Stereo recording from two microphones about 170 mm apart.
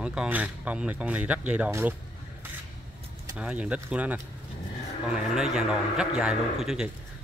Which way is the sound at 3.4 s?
5° right (ahead or behind).